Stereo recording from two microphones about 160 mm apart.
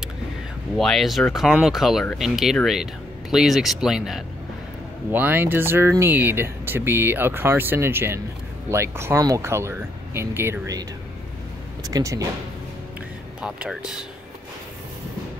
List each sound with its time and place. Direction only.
0.7 s speech: centre (ahead or behind); by 12.3 s 20° right (ahead or behind)
13.4 s speech: 5° right (ahead or behind)